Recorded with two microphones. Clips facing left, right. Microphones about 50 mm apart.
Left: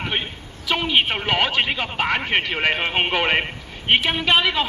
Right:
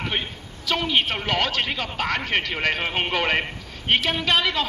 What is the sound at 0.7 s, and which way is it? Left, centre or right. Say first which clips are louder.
A man's voice: left 2 dB; centre.